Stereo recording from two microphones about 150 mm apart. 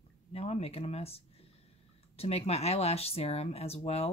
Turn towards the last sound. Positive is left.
turn(degrees=45)  # may be behind; listen again after turning